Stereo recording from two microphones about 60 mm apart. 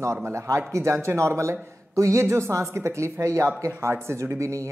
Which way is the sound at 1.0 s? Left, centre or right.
Right.